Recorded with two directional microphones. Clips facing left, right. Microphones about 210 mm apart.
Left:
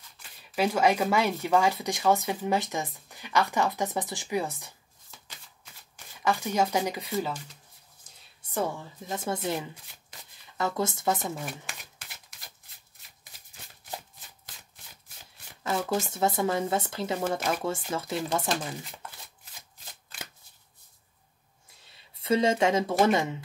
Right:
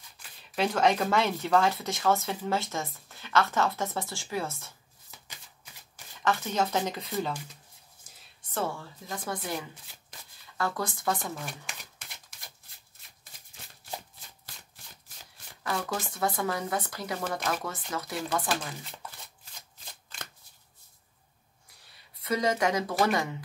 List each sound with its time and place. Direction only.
0.6 s speech: 10° left (ahead or behind)
6.2 s speech: 10° left (ahead or behind)
8.5 s speech: 20° left (ahead or behind)
11.4 s shuffling cards: centre (ahead or behind)
15.6 s speech: 25° left (ahead or behind)
21.8 s speech: 25° left (ahead or behind)